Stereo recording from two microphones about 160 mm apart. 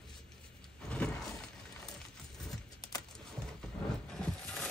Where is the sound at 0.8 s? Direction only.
10° left (ahead or behind).